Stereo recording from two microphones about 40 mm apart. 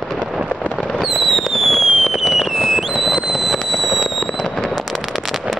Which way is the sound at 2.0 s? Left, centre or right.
Centre.